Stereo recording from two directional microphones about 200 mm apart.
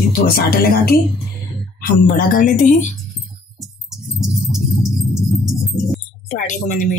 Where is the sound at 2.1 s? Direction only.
45° left (ahead or behind).